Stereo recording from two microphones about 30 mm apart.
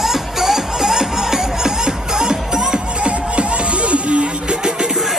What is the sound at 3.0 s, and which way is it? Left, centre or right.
Music, right.